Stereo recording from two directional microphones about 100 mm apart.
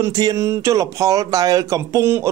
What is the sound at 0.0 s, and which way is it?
Speech, 40° right (ahead or behind).